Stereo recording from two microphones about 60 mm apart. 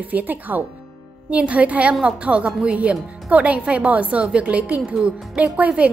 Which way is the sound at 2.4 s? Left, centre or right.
Centre.